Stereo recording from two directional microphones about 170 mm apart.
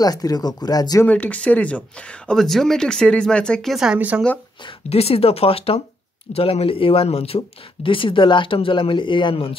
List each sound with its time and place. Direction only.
0.0 s speech: 20° left (ahead or behind)
1.0 s speech: 10° left (ahead or behind); by 4.2 s 5° right (ahead or behind)
4.6 s speech: 35° left (ahead or behind)